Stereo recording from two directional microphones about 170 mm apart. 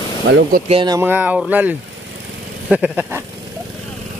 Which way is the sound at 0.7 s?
30° right (ahead or behind).